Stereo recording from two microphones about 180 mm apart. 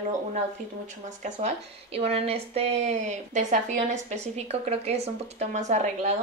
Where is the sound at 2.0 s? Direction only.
35° right (ahead or behind).